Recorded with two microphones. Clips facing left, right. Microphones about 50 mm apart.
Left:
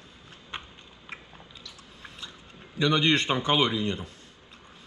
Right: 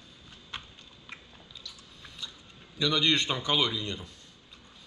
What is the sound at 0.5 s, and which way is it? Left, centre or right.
Biting, left.